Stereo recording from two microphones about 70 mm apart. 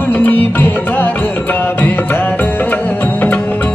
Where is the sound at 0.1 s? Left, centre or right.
Left.